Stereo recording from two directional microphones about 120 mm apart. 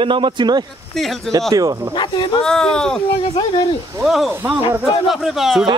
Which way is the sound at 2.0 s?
40° left (ahead or behind).